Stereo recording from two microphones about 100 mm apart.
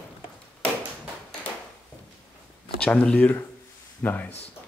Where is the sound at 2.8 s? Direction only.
10° left (ahead or behind).